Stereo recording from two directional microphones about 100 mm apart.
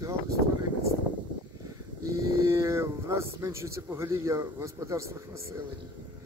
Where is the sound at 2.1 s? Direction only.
30° right (ahead or behind).